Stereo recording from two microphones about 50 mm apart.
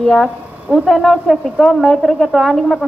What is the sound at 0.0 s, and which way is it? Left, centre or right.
A woman's voice, centre.